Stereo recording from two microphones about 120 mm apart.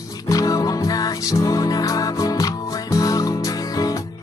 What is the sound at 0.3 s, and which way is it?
Music, 30° left (ahead or behind).